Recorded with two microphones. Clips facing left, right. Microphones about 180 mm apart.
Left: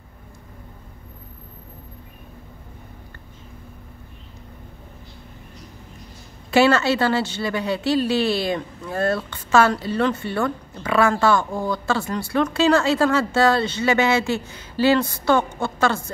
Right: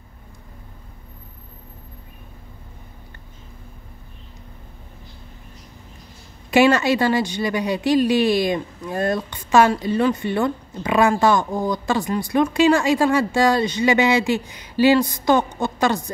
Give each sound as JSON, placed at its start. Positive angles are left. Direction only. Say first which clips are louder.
{"t": 6.5, "sound": "a woman's voice", "louder": "right 1 dB", "side_deg": -15}